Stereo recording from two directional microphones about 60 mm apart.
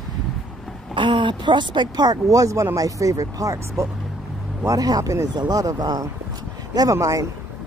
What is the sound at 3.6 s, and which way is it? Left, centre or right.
Speech, right.